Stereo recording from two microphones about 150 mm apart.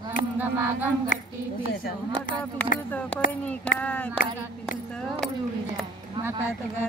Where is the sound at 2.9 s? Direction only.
10° left (ahead or behind).